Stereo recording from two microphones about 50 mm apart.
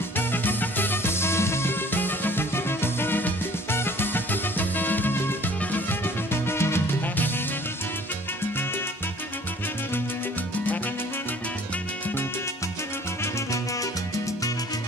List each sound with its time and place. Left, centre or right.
0.3 s music: left